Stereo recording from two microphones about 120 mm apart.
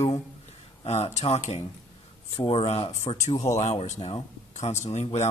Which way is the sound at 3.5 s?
70° left (ahead or behind).